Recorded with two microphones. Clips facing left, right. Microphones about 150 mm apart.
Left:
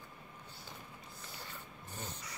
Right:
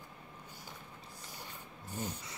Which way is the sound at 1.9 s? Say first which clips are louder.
Right 6 dB; 10° right (ahead or behind).